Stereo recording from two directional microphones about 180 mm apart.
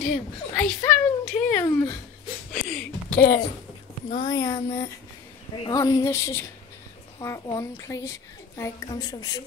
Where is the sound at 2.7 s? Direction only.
5° left (ahead or behind).